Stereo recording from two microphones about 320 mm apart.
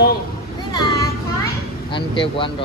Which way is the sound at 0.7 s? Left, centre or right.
Centre.